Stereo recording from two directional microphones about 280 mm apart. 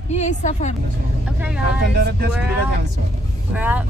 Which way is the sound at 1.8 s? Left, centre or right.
Right.